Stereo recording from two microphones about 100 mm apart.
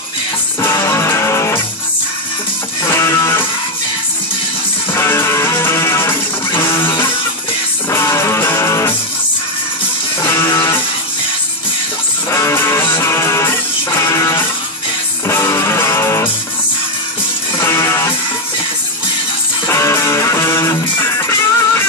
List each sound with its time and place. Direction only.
0.6 s music: 30° left (ahead or behind)
2.9 s music: 30° left (ahead or behind)
4.9 s music: 25° left (ahead or behind)
7.9 s music: 30° left (ahead or behind)
10.2 s music: 30° left (ahead or behind)
12.3 s music: 30° left (ahead or behind)
17.6 s music: 30° left (ahead or behind)
19.7 s music: 30° left (ahead or behind)